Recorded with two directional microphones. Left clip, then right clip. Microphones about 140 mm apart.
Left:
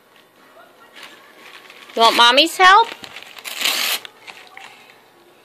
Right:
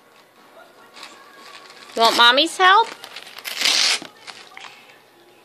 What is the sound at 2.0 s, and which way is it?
Speech, 15° left (ahead or behind).